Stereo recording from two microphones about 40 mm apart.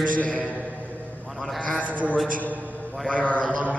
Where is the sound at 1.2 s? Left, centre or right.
Centre.